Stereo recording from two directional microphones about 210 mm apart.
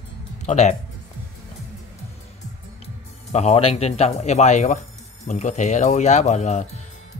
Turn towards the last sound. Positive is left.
turn(degrees=35)  # may be behind; listen again after turning